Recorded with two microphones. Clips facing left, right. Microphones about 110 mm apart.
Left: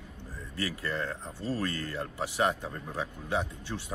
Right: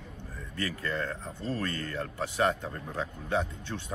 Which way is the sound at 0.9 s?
15° left (ahead or behind).